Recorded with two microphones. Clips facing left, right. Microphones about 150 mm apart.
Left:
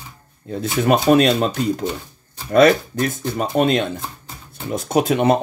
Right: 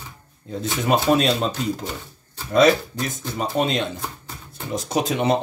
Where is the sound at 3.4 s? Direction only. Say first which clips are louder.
Left 4 dB; 55° left (ahead or behind).